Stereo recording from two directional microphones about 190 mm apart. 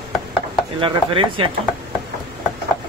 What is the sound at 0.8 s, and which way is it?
Speech, 30° right (ahead or behind).